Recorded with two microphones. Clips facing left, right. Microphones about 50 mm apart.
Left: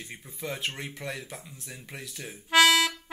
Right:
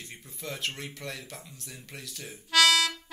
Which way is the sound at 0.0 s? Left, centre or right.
Centre.